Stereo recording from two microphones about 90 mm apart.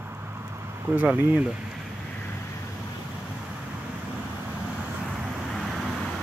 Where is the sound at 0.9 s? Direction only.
15° right (ahead or behind).